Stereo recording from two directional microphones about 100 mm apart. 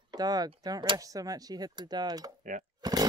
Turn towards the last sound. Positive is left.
turn(degrees=-40)  # may be behind; listen again after turning